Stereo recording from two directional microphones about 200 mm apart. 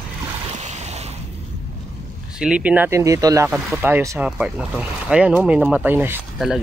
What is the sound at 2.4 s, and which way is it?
Speech, 5° right (ahead or behind).